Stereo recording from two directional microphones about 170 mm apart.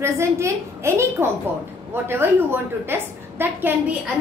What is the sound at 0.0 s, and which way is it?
A woman's voice, 15° right (ahead or behind).